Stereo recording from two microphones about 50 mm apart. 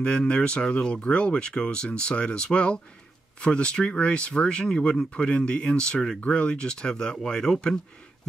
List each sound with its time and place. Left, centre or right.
0.0 s speech: centre